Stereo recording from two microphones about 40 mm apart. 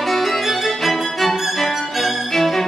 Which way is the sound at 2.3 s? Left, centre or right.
Centre.